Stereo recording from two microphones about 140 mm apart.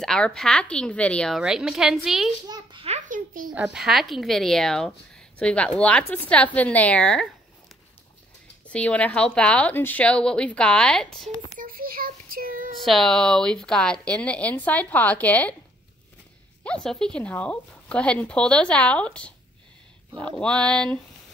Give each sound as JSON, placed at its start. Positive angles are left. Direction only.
{"t": 0.0, "sound": "speech", "side_deg": 5}
{"t": 1.4, "sound": "a woman's voice", "side_deg": -5}
{"t": 2.4, "sound": "a sound", "side_deg": -30}
{"t": 3.5, "sound": "a woman's voice", "side_deg": -5}
{"t": 8.6, "sound": "speech", "side_deg": 10}
{"t": 11.6, "sound": "child singing", "side_deg": -90}
{"t": 12.8, "sound": "speech", "side_deg": 0}
{"t": 16.6, "sound": "speech", "side_deg": 5}